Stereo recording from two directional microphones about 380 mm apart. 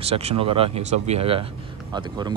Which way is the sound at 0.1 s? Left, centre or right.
Centre.